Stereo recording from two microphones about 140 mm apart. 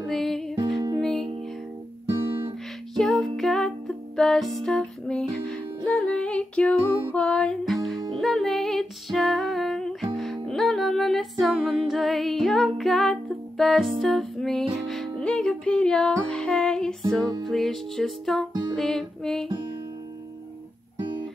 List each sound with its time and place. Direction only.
0.0 s music: centre (ahead or behind)
0.7 s music: 30° right (ahead or behind)
1.0 s music: 5° left (ahead or behind)
2.0 s guitar: 35° right (ahead or behind)
3.0 s music: centre (ahead or behind)
18.5 s music: 30° right (ahead or behind)
18.8 s music: 5° left (ahead or behind)